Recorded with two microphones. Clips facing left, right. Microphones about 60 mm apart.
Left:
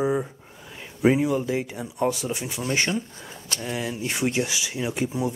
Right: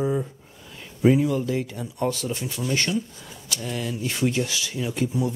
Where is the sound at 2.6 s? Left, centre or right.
Left.